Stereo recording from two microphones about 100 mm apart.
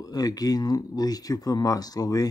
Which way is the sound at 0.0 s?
40° left (ahead or behind).